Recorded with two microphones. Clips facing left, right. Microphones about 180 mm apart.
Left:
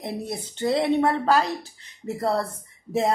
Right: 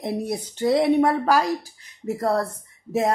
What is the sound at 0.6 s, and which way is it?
Speech, 15° right (ahead or behind).